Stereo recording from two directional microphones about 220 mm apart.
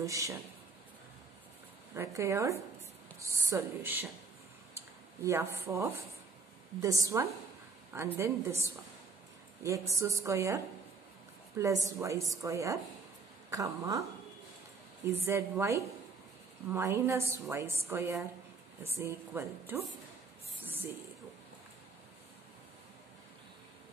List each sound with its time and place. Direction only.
0.0 s a woman's voice: 15° right (ahead or behind)
2.0 s a woman's voice: 10° right (ahead or behind)
5.2 s a woman's voice: 10° right (ahead or behind)
15.2 s a woman's voice: 10° right (ahead or behind)
20.6 s a sound: 10° right (ahead or behind)